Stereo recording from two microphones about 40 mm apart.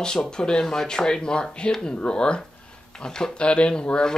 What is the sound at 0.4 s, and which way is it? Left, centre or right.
Speech, centre.